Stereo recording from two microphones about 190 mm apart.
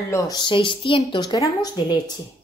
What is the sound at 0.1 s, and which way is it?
A woman's voice, 20° left (ahead or behind).